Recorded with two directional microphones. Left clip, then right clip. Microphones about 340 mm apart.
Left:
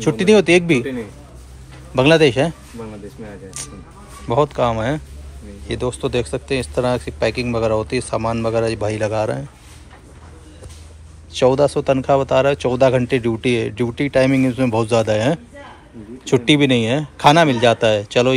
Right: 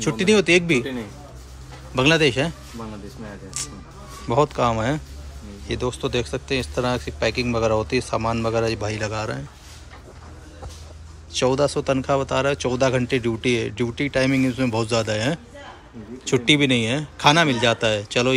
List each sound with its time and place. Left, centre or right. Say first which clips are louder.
0.0 s speech: left 5 dB; centre
2.0 s speech: left 5 dB; centre
11.3 s speech: left 5 dB; centre